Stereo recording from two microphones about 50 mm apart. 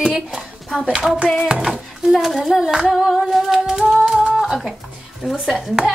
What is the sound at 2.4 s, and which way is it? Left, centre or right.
Speech, centre.